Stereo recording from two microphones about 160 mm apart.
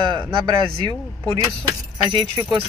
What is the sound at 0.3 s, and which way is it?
Speech, 35° right (ahead or behind).